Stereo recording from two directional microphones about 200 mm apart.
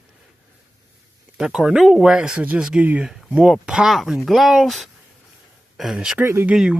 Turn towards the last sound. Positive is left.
turn(degrees=-5)  # may be behind; listen again after turning